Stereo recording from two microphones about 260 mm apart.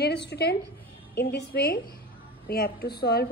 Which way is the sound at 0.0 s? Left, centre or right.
Left.